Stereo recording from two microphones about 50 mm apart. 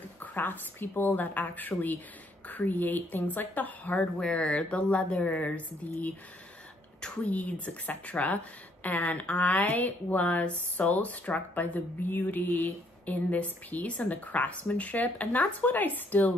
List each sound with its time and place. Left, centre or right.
0.2 s speech: left
4.2 s speech: left
7.2 s speech: left